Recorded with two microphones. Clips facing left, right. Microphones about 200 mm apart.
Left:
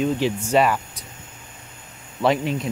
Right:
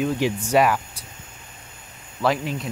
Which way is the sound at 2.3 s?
Centre (ahead or behind).